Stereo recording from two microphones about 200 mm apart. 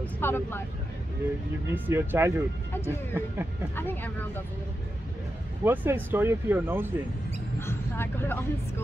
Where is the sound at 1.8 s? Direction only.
10° right (ahead or behind).